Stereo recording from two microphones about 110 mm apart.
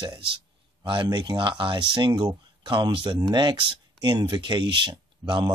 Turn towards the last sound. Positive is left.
turn(degrees=-45)  # may be behind; listen again after turning